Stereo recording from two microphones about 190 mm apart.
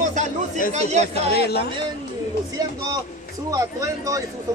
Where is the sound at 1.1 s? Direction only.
55° left (ahead or behind).